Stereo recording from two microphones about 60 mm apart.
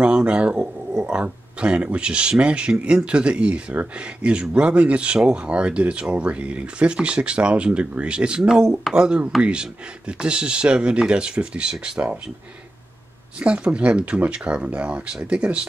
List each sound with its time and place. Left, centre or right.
0.0 s speech: centre
13.4 s speech: centre